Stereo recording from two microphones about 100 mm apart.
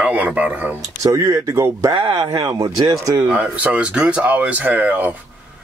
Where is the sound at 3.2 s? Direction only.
10° right (ahead or behind).